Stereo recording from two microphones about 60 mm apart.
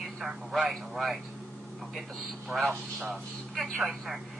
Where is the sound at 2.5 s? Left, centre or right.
Centre.